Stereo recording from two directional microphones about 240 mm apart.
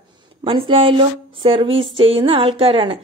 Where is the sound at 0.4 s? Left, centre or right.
Right.